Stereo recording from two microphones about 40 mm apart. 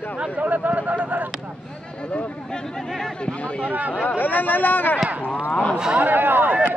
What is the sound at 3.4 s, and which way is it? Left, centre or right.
Speech, left.